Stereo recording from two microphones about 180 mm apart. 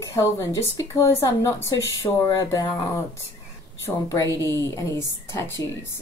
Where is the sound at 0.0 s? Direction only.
15° left (ahead or behind).